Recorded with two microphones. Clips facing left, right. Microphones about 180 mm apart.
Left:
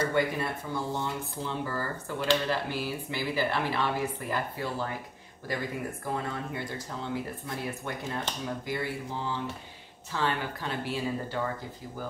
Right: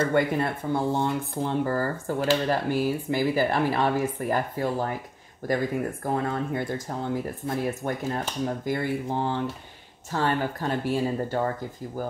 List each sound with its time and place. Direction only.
0.0 s speech: 55° right (ahead or behind)
6.0 s speech: 50° right (ahead or behind)
10.1 s speech: 45° right (ahead or behind)